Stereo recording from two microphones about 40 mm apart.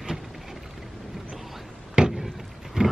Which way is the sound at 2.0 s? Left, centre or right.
Right.